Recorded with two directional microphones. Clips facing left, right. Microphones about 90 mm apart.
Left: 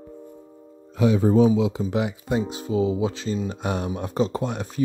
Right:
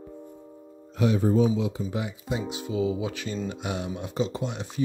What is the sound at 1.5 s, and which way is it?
Speech, 85° left.